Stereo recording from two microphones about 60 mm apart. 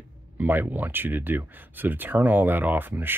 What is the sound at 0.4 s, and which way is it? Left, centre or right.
Speech, right.